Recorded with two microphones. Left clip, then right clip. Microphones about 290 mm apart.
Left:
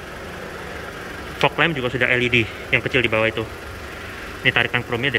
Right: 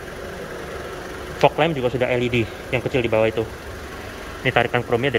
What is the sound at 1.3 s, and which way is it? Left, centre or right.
Speech, centre.